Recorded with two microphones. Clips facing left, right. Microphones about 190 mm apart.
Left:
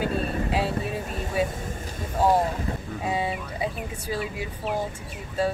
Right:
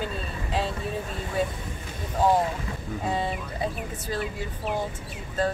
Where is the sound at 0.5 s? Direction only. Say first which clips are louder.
Left 3 dB; 10° left (ahead or behind).